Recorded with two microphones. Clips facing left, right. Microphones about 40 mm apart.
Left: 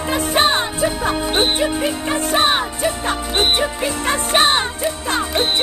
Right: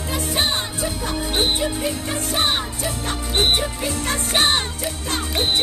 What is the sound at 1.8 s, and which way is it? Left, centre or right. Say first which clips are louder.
Music: left 5 dB; left.